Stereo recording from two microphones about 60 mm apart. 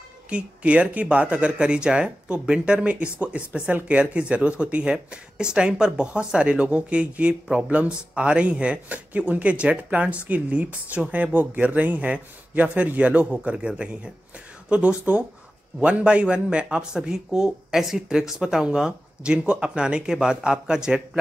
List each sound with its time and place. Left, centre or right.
0.3 s a man's voice: right